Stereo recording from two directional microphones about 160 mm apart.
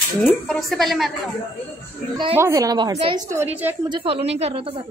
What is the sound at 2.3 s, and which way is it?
A woman's voice, 20° right (ahead or behind).